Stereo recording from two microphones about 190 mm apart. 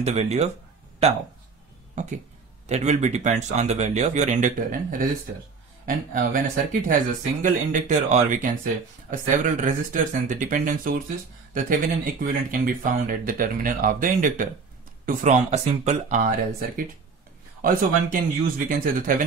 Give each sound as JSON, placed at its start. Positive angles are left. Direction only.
{"t": 0.0, "sound": "speech", "side_deg": -35}
{"t": 2.6, "sound": "speech", "side_deg": -35}